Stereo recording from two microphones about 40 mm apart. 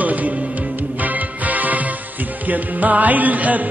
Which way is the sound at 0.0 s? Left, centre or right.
Right.